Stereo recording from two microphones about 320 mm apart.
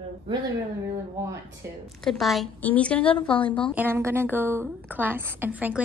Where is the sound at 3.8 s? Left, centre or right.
Centre.